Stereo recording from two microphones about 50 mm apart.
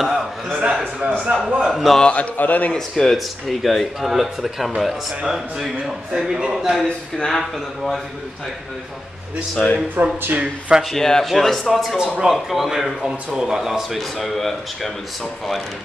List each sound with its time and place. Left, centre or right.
1.2 s speech: centre
1.6 s speech: centre
2.0 s a man's voice: left
2.3 s a man's voice: left
2.7 s speech: centre
6.5 s speech: centre
9.6 s speech: centre
10.0 s speech: right
10.9 s speech: centre